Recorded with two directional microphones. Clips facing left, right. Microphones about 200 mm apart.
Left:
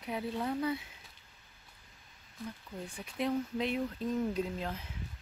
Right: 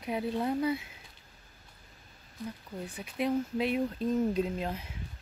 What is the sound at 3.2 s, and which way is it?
Speech, 10° right (ahead or behind).